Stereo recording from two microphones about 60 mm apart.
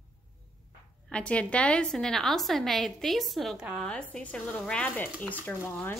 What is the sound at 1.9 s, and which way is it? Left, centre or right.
A woman's voice, centre.